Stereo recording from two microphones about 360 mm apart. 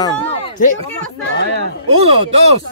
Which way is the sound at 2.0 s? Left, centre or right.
Centre.